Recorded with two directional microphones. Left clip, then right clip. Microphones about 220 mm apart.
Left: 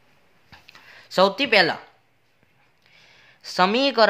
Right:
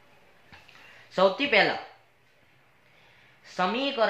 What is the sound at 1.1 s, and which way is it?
Speech, 50° left (ahead or behind).